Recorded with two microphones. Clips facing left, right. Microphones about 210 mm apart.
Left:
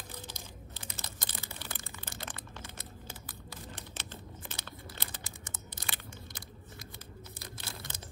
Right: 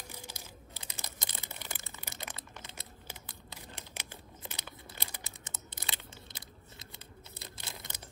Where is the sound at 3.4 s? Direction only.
15° right (ahead or behind).